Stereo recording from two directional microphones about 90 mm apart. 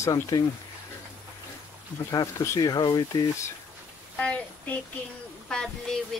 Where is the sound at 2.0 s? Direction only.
35° left (ahead or behind).